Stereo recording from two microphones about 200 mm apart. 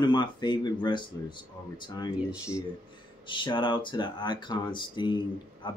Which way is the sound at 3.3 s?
25° left (ahead or behind).